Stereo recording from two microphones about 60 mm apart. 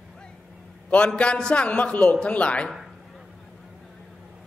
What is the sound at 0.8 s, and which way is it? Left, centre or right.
A man's voice, left.